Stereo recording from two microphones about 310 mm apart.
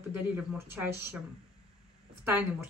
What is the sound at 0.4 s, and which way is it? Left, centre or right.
Speech, centre.